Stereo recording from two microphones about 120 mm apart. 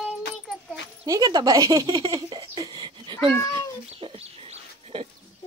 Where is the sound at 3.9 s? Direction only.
50° right (ahead or behind).